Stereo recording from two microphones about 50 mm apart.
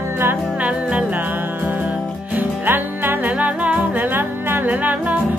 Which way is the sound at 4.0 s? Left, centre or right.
Right.